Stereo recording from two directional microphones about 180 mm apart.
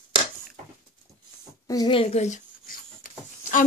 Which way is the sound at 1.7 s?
25° left (ahead or behind).